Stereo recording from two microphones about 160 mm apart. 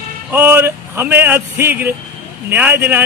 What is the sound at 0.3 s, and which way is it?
A man's voice, 15° right (ahead or behind).